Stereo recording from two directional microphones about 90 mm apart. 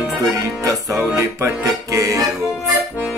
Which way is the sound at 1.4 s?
35° right (ahead or behind).